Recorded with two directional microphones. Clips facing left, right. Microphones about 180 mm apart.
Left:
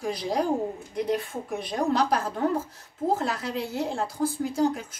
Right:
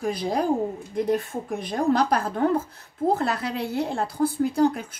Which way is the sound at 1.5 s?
50° right (ahead or behind).